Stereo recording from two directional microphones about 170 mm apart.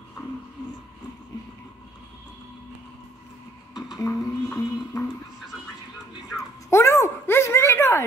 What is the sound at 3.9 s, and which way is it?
Music, 20° left (ahead or behind).